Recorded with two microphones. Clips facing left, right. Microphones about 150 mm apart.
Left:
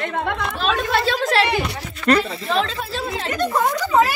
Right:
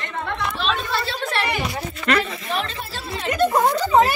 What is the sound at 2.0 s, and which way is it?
Speech, 35° left (ahead or behind).